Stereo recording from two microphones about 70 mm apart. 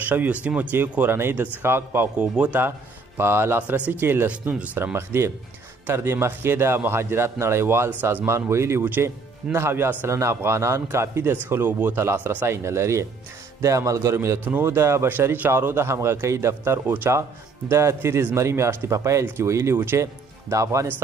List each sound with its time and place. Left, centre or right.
0.1 s speech: right
2.1 s speech: centre
3.2 s a man's voice: right
3.6 s speech: right
4.3 s speech: centre
4.9 s a man's voice: right
8.4 s a man's voice: right
14.4 s a man's voice: right
15.5 s a man's voice: right
16.8 s speech: right
17.6 s a man's voice: right